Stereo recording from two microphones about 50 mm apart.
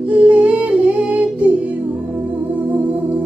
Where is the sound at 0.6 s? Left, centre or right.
Right.